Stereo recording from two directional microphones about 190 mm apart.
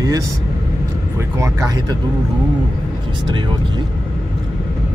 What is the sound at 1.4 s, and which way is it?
Speech, 15° right (ahead or behind).